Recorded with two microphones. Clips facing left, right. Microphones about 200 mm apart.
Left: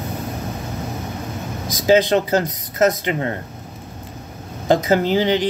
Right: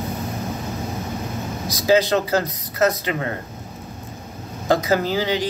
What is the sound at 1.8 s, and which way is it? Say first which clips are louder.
Speech: left 2 dB; 20° left (ahead or behind).